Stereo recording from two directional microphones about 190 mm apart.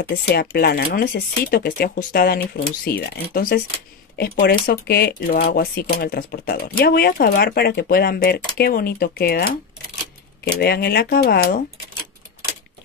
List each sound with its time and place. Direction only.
0.1 s speech: 55° left (ahead or behind)
10.6 s speech: 55° left (ahead or behind)